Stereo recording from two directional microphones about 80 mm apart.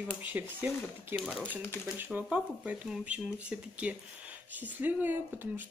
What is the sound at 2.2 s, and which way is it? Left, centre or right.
Speech, centre.